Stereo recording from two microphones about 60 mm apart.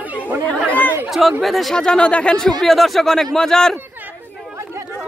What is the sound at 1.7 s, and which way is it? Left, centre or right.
Speech, centre.